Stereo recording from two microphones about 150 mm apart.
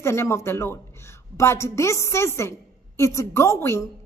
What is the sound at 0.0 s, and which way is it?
A woman's voice, 15° left (ahead or behind).